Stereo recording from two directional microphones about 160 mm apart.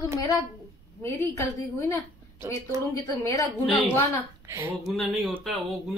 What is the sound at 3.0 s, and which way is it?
Speech, 20° left (ahead or behind).